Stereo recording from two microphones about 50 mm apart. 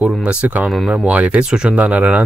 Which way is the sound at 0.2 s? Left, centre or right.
Right.